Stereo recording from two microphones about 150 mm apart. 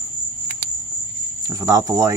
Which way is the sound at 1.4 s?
25° right (ahead or behind).